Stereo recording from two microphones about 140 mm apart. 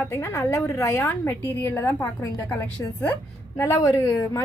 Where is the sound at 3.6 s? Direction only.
20° left (ahead or behind).